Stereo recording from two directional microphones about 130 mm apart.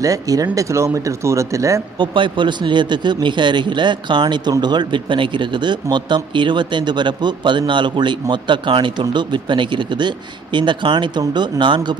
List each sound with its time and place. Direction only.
0.0 s speech: 25° right (ahead or behind)
2.0 s speech: 40° right (ahead or behind)